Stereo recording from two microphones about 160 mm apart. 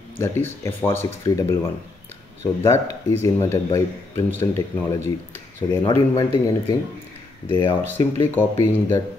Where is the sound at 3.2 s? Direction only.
15° left (ahead or behind).